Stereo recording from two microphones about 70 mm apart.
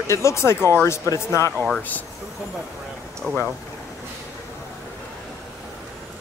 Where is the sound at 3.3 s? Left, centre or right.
Left.